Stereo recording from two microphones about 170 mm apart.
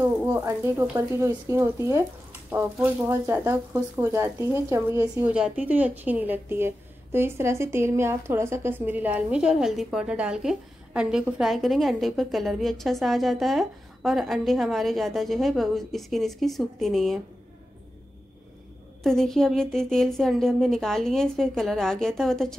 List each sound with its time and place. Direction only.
0.0 s speech: 10° right (ahead or behind)
19.0 s speech: centre (ahead or behind)